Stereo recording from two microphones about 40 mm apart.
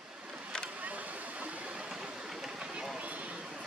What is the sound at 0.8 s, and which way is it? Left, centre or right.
Waterfall, right.